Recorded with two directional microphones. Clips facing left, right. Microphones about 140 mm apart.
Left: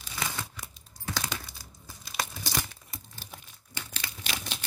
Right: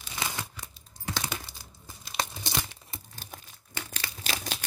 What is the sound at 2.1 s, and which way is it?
Crumpling, 25° right (ahead or behind).